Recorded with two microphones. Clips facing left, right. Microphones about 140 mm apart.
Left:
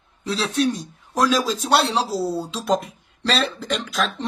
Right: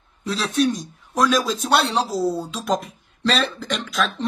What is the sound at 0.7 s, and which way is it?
Speech, 30° left (ahead or behind).